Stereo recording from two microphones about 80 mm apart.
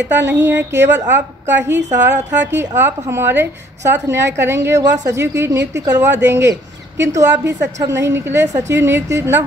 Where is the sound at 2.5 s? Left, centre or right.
Right.